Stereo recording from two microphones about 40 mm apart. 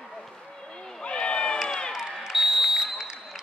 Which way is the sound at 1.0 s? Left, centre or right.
Left.